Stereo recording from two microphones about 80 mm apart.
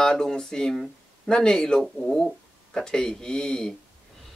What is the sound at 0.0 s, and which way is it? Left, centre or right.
Speech, centre.